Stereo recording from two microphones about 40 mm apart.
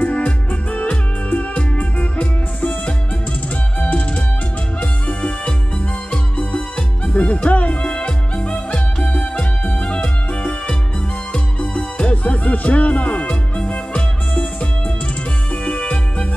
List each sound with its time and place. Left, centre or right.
0.0 s music: left
5.0 s music: left
7.1 s music: left